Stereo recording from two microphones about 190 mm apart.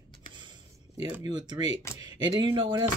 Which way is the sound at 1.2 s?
20° right (ahead or behind).